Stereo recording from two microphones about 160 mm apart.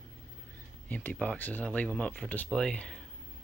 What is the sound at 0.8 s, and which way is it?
Speech, 10° left (ahead or behind).